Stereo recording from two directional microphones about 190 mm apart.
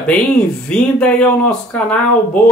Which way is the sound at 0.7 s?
5° left (ahead or behind).